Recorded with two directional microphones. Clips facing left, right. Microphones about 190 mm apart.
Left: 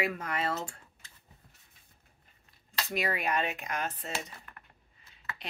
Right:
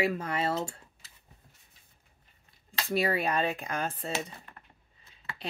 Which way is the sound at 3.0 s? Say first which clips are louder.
Right 3 dB; 30° right (ahead or behind).